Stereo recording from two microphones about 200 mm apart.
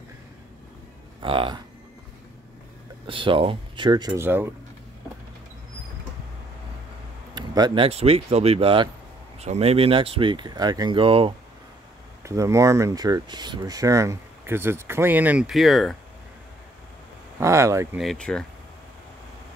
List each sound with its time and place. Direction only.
1.2 s speech: 25° right (ahead or behind)
3.1 s speech: 25° right (ahead or behind)
4.1 s speech: 10° right (ahead or behind)
7.3 s speech: 20° right (ahead or behind)
12.3 s speech: 15° right (ahead or behind); by 16.0 s centre (ahead or behind)
17.4 s speech: 15° right (ahead or behind)
17.9 s speech: centre (ahead or behind)